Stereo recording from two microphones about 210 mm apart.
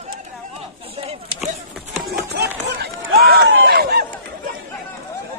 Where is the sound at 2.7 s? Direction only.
50° right (ahead or behind).